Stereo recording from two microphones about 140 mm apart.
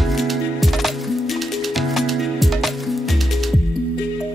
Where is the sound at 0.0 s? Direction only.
Centre (ahead or behind).